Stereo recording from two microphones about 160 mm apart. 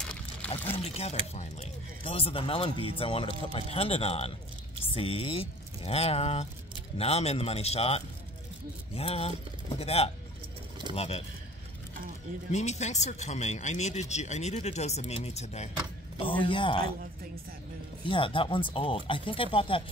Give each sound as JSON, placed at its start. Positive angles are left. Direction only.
{"t": 0.5, "sound": "speech", "side_deg": 35}
{"t": 12.4, "sound": "speech", "side_deg": 45}
{"t": 16.2, "sound": "speech", "side_deg": 35}
{"t": 18.0, "sound": "speech", "side_deg": 35}